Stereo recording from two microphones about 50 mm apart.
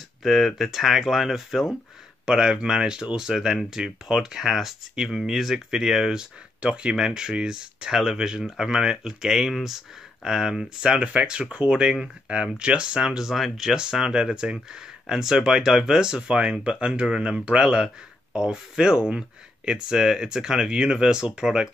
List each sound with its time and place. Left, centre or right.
0.2 s speech: centre
2.2 s speech: centre